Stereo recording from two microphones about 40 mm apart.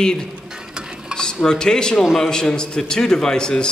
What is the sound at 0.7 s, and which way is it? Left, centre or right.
Stir, centre.